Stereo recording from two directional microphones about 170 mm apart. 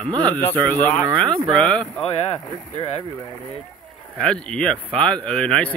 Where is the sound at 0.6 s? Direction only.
10° left (ahead or behind).